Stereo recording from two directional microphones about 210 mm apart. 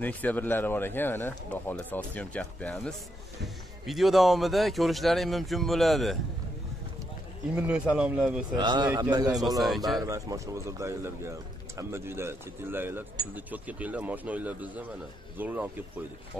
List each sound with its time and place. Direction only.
0.0 s speech: 10° left (ahead or behind)
7.5 s speech: 5° right (ahead or behind)
8.5 s a man's voice: 20° right (ahead or behind)